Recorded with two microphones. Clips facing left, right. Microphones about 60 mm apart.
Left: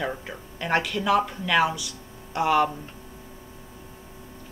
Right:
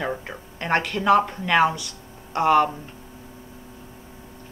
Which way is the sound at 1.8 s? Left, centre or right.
Right.